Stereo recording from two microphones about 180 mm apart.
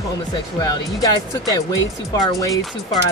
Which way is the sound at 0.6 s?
20° left (ahead or behind).